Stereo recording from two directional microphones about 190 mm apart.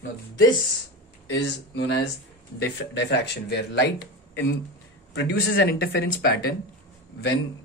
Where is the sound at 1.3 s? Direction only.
70° left (ahead or behind).